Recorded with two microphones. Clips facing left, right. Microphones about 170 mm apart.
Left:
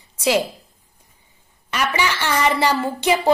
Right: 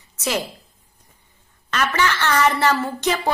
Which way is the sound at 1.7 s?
10° left (ahead or behind).